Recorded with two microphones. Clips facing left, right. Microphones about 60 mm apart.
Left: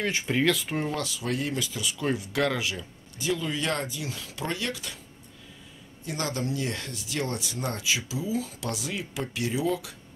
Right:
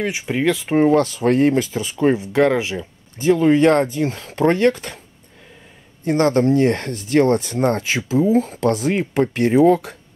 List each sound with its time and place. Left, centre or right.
0.0 s speech: centre
0.7 s speech: right
6.0 s speech: right